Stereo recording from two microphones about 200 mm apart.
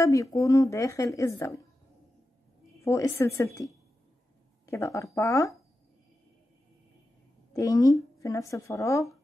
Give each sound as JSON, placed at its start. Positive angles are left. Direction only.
{"t": 0.0, "sound": "a woman's voice", "side_deg": 15}
{"t": 2.8, "sound": "a woman's voice", "side_deg": 15}
{"t": 4.6, "sound": "a woman's voice", "side_deg": 15}
{"t": 7.5, "sound": "a woman's voice", "side_deg": 15}